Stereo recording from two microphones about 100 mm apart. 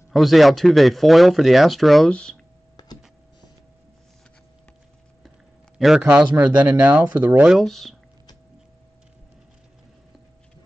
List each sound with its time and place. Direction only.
0.1 s speech: centre (ahead or behind)
5.8 s speech: 5° right (ahead or behind)
7.4 s speech: centre (ahead or behind)